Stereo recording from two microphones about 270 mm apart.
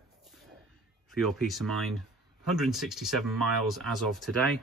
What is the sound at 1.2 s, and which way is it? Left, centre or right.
Speech, centre.